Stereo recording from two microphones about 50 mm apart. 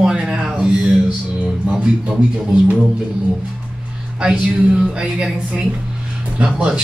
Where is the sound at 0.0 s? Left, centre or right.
Centre.